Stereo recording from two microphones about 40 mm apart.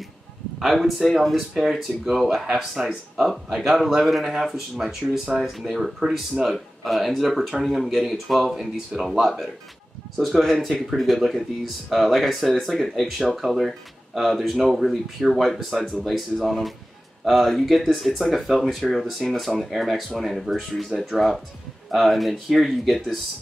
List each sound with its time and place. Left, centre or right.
0.6 s speech: centre
10.2 s speech: centre